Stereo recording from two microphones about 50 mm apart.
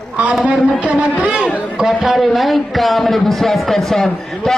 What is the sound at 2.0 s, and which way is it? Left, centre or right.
A man's voice, centre.